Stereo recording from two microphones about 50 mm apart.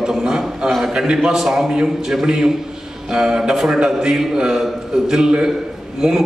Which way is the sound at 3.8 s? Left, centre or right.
Centre.